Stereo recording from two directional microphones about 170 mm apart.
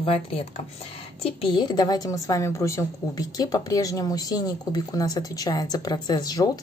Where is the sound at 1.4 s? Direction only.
25° left (ahead or behind).